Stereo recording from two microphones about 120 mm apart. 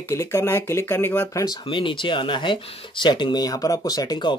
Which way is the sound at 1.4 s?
40° left (ahead or behind).